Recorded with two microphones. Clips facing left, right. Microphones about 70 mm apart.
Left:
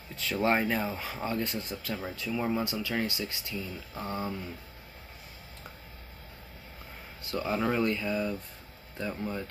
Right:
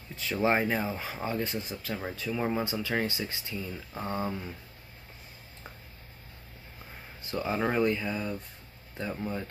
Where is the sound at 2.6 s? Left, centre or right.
Right.